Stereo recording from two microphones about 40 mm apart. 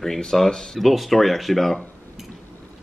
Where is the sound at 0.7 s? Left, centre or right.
Centre.